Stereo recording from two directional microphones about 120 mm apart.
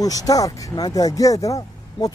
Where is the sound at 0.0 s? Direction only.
30° left (ahead or behind).